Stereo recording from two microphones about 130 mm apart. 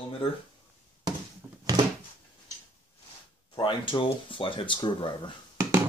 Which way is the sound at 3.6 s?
40° left (ahead or behind).